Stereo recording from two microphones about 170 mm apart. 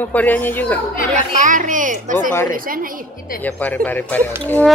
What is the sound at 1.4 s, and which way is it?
A woman's voice, 50° right (ahead or behind).